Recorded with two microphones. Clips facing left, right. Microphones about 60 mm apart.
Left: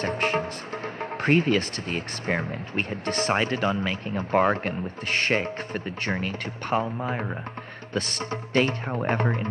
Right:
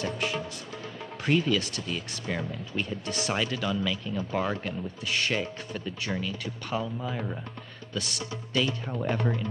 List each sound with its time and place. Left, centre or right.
0.0 s music: left
1.2 s speech: left